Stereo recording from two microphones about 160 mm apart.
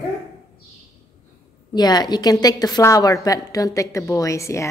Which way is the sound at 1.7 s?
25° left (ahead or behind).